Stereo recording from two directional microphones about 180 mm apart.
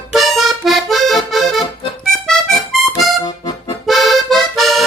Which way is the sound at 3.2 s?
20° left (ahead or behind).